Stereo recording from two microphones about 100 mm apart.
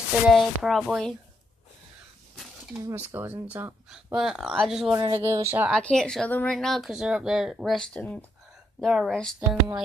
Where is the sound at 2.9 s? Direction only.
25° right (ahead or behind).